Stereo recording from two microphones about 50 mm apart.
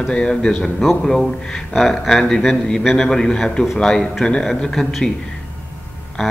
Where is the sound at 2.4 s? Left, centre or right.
Centre.